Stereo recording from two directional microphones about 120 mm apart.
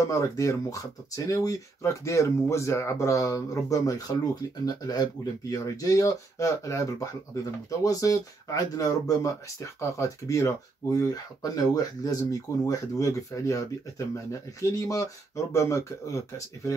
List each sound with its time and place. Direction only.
0.0 s speech: 25° left (ahead or behind)